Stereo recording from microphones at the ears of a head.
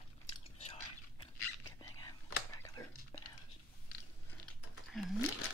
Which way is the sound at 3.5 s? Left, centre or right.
Left.